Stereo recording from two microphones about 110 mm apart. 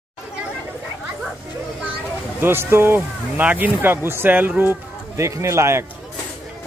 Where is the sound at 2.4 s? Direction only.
20° right (ahead or behind).